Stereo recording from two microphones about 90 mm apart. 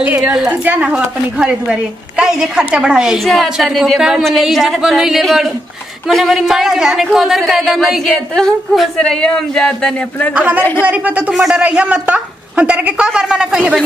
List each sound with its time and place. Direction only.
0.0 s a woman's voice: 15° right (ahead or behind); by 10.3 s 5° left (ahead or behind)
10.3 s a woman's voice: 15° right (ahead or behind)
11.3 s a woman's voice: 5° right (ahead or behind)